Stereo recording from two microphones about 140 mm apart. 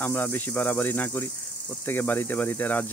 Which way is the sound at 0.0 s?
15° left (ahead or behind).